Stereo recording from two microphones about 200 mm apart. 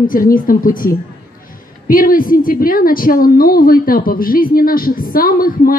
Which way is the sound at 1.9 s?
45° left (ahead or behind).